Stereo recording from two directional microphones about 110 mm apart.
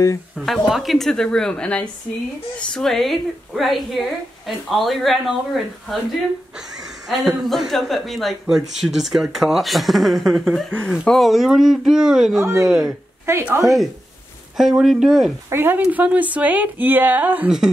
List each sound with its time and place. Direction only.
0.4 s speech: centre (ahead or behind)
13.2 s a woman's voice: 15° right (ahead or behind)
14.6 s speech: 5° right (ahead or behind)
15.5 s speech: 20° right (ahead or behind)